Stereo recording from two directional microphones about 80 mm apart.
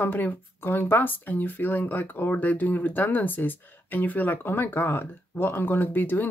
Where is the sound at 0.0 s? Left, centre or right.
Left.